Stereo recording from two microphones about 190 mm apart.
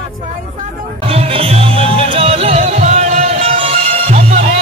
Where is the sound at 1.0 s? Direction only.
30° right (ahead or behind).